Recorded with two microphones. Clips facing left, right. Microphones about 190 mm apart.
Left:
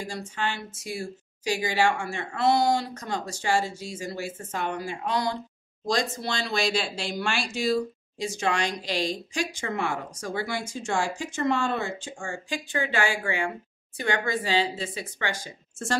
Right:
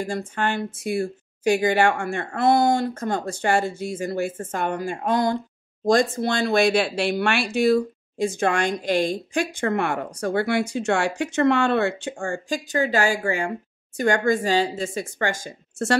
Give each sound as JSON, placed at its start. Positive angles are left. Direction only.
{"t": 0.0, "sound": "a woman's voice", "side_deg": -55}